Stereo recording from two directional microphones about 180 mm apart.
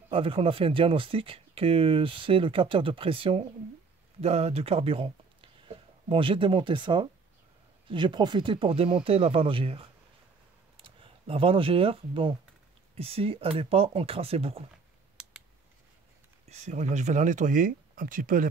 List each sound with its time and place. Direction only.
0.1 s speech: 30° right (ahead or behind)
15.2 s a sound: 5° right (ahead or behind)
16.4 s speech: 40° right (ahead or behind)